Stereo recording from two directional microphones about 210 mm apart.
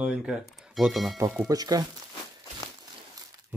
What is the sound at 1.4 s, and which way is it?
Speech, 15° right (ahead or behind).